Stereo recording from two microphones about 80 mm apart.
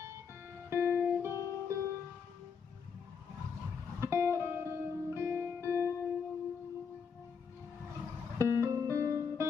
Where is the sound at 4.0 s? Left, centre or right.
Right.